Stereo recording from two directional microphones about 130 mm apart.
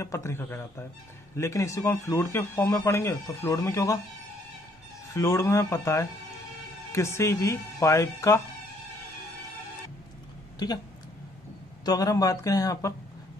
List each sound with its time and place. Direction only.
0.0 s speech: 20° left (ahead or behind)
5.1 s speech: 25° left (ahead or behind)
11.8 s speech: 25° left (ahead or behind)